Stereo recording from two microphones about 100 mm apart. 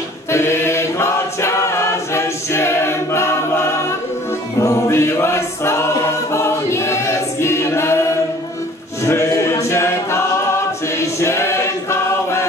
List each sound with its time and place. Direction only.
0.3 s choir: 25° left (ahead or behind)
9.0 s choir: 30° left (ahead or behind)